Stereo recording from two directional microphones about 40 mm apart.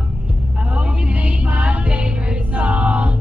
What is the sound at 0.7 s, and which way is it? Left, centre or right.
Music, right.